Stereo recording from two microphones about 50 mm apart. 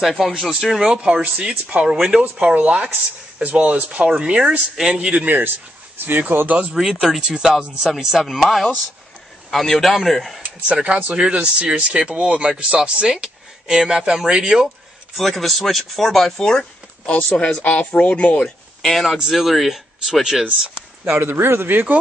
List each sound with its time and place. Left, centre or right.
0.0 s speech: centre
0.7 s speech: centre
2.2 s speech: right
5.9 s speech: right
6.7 s speech: centre
7.2 s speech: centre
7.9 s speech: centre
10.4 s speech: right
15.1 s speech: centre
17.0 s speech: left
18.8 s speech: centre
21.2 s a man's voice: right